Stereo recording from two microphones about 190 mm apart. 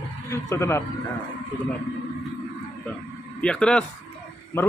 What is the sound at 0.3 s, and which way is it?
Speech, 15° left (ahead or behind).